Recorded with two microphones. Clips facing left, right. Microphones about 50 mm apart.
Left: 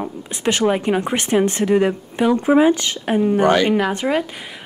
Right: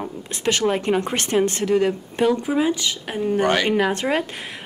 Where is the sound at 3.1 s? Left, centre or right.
Centre.